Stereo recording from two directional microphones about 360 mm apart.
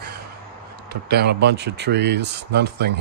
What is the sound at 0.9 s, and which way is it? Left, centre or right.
Speech, right.